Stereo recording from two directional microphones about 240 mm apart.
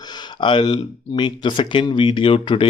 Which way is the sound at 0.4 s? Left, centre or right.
Centre.